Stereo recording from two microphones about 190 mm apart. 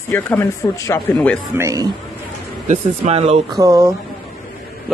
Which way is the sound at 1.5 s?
15° right (ahead or behind).